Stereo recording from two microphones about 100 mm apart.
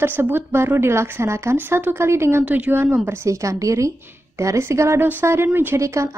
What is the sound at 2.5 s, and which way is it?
Speech, 15° right (ahead or behind).